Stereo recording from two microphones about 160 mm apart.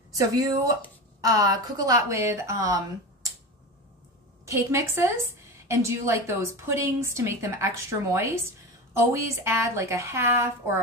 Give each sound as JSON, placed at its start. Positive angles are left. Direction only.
{"t": 0.1, "sound": "a woman's voice", "side_deg": -20}
{"t": 4.5, "sound": "a woman's voice", "side_deg": -20}